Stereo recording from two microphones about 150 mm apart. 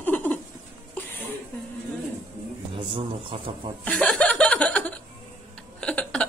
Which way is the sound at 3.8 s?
5° left (ahead or behind).